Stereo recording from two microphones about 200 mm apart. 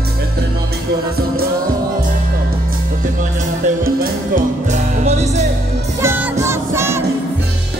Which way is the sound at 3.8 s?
45° right (ahead or behind).